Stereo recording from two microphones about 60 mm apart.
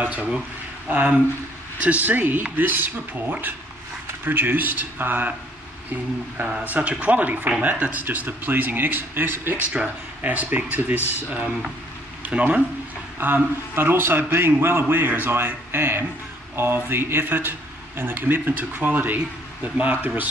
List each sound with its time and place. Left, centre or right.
0.0 s a man's voice: right
13.2 s a man's voice: right